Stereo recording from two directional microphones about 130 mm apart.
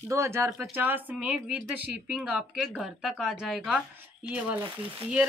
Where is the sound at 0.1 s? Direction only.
20° right (ahead or behind).